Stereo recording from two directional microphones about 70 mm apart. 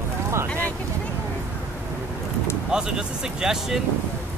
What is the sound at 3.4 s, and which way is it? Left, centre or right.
Speech, centre.